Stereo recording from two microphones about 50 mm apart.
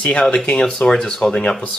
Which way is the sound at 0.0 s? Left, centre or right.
Left.